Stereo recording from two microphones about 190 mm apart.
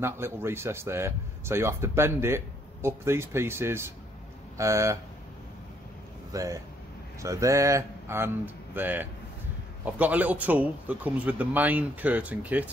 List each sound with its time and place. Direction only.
0.0 s speech: 10° right (ahead or behind)
6.3 s speech: 15° right (ahead or behind)